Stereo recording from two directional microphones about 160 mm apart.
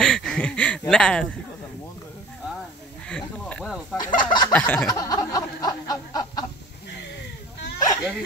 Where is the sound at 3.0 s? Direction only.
5° left (ahead or behind).